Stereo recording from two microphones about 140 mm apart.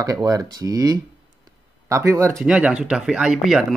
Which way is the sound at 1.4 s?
20° right (ahead or behind).